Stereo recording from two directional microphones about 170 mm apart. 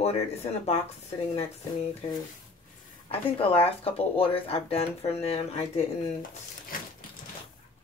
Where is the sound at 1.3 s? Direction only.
35° left (ahead or behind).